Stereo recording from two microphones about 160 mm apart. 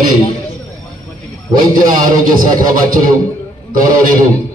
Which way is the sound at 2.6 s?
60° right (ahead or behind).